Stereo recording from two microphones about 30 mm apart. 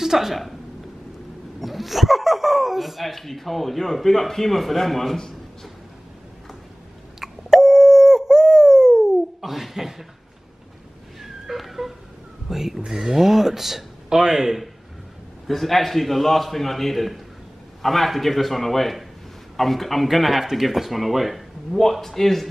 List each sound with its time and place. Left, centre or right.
0.0 s a sound: centre
0.3 s speech: centre
1.6 s speech: centre
7.2 s busy signal: centre
7.5 s a sound: centre
9.4 s speech: centre
11.1 s a sound: centre
12.4 s speech: centre
15.4 s speech: centre
21.7 s speech: centre